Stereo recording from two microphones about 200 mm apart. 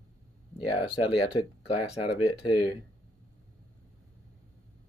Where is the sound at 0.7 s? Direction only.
25° left (ahead or behind).